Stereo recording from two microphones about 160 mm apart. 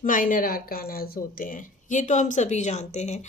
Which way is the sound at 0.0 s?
55° left (ahead or behind).